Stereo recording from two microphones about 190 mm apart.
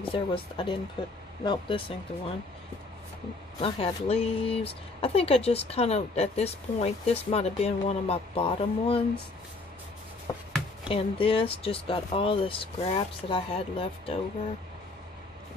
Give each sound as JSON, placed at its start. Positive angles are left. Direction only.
{"t": 0.1, "sound": "speech", "side_deg": 25}
{"t": 3.6, "sound": "speech", "side_deg": 30}
{"t": 10.9, "sound": "speech", "side_deg": 30}